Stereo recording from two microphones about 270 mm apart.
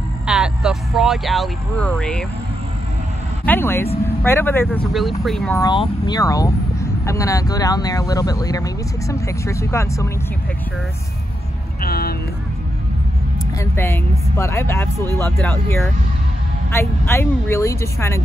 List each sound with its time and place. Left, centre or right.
0.3 s speech: centre
3.4 s speech: centre
5.6 s speech: centre
11.8 s speech: left
13.6 s speech: centre